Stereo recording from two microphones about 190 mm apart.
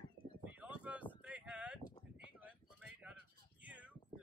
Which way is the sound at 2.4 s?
5° right (ahead or behind).